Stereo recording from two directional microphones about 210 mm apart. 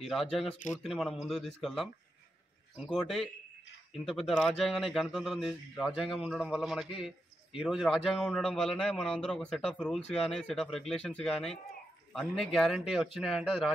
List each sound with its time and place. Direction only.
0.0 s a man's voice: centre (ahead or behind)
0.5 s a man's voice: 35° left (ahead or behind)
0.8 s a man's voice: centre (ahead or behind)